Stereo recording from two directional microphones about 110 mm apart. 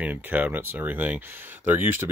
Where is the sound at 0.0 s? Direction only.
15° right (ahead or behind).